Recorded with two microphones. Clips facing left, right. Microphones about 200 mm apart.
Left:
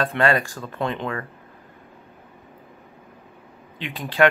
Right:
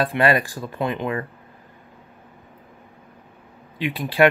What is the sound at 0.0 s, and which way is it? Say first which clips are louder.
Speech: right 1 dB; 15° right (ahead or behind).